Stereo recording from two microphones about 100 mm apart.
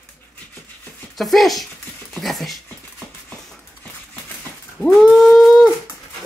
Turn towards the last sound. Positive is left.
turn(degrees=0)  # may be behind; listen again after turning